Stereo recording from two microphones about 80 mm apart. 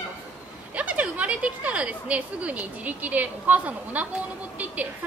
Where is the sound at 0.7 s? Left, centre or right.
Centre.